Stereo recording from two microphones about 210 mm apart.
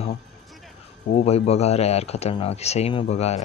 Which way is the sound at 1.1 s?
30° left (ahead or behind).